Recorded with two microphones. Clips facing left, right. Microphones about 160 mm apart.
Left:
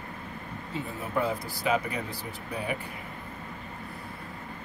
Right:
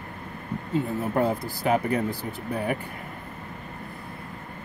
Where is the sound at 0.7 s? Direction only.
55° right (ahead or behind).